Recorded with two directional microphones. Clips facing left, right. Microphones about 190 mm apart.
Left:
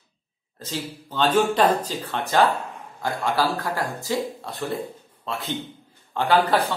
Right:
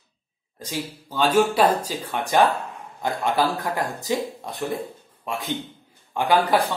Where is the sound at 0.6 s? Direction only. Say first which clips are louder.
Right 1 dB; 10° right (ahead or behind).